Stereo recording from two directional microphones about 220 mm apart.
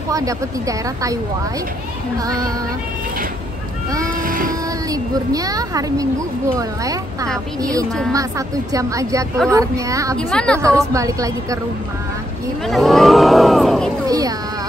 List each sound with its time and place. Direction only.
0.1 s speech: 15° right (ahead or behind)
2.2 s speech: 15° right (ahead or behind)
4.2 s a sound: 40° right (ahead or behind)
4.9 s speech: 15° right (ahead or behind)
8.1 s speech: 15° right (ahead or behind)
10.3 s speech: 5° left (ahead or behind)
10.6 s speech: 15° right (ahead or behind)
12.6 s a sound: centre (ahead or behind)
14.0 s music: 15° right (ahead or behind)